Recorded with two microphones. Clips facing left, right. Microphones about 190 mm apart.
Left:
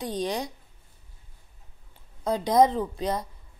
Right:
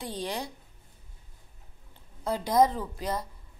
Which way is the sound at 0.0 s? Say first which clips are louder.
Left 5 dB; 15° left (ahead or behind).